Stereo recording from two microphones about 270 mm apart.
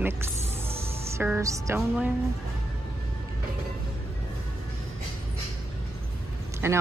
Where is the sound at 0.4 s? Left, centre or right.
Right.